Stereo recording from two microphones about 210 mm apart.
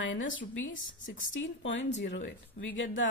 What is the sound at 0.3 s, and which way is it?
Speech, 65° left (ahead or behind).